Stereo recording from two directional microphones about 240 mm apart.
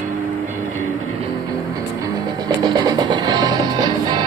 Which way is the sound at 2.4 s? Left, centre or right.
Centre.